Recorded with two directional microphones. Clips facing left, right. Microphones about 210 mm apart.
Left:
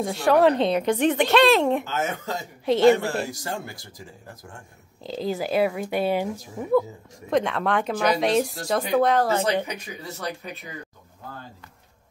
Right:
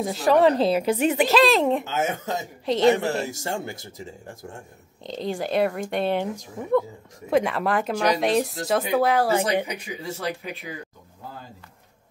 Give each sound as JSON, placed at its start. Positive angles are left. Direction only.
{"t": 0.0, "sound": "speech", "side_deg": 0}
{"t": 3.0, "sound": "speech", "side_deg": -25}
{"t": 5.0, "sound": "speech", "side_deg": 5}